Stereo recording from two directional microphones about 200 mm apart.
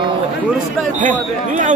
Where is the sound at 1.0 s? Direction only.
40° right (ahead or behind).